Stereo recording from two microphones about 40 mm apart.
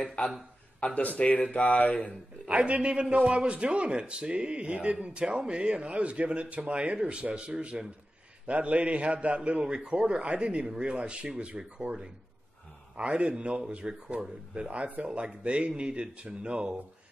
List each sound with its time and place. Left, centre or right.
0.2 s speech: left
2.5 s a man's voice: right
8.5 s a man's voice: right
11.9 s speech: right
12.9 s a man's voice: right